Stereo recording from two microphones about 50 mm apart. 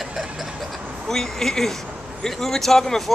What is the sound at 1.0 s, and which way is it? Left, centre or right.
Speech, centre.